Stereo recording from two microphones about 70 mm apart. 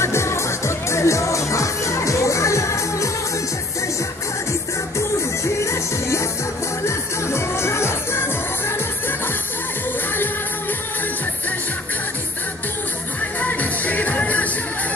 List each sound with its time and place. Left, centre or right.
0.0 s music: left
4.9 s music: left
13.4 s music: left